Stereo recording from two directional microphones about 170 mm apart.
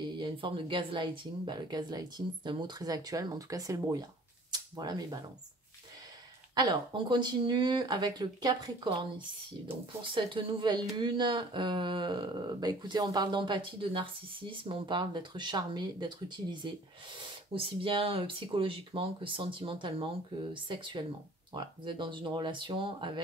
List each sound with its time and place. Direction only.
0.2 s speech: 30° right (ahead or behind)
4.5 s a sound: 25° right (ahead or behind)
6.5 s speech: 25° right (ahead or behind)
10.1 s speech: 30° right (ahead or behind)